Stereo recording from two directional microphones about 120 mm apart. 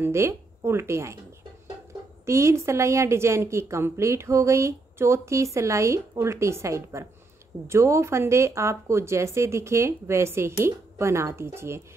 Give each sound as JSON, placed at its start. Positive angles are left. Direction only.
{"t": 0.0, "sound": "a woman's voice", "side_deg": -25}
{"t": 2.2, "sound": "a woman's voice", "side_deg": -25}